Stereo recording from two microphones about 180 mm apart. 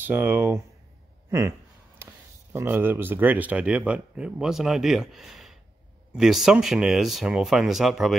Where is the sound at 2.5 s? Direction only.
10° right (ahead or behind).